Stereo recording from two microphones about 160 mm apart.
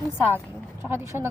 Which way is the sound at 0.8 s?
15° right (ahead or behind).